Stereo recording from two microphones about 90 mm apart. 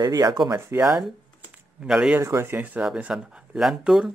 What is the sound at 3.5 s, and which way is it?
Speech, 5° right (ahead or behind).